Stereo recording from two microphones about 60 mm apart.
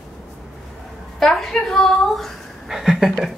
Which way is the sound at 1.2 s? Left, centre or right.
Centre.